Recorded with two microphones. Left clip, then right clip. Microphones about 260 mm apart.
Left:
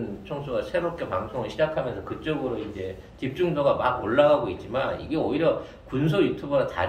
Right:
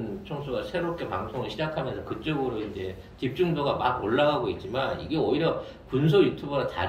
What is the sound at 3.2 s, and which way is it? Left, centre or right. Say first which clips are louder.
A man's voice: left 3 dB; centre.